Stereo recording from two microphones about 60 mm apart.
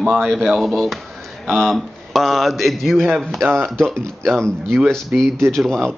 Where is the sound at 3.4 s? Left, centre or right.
Right.